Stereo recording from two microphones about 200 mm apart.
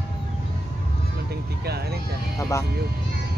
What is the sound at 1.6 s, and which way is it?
Vehicle, 55° right (ahead or behind).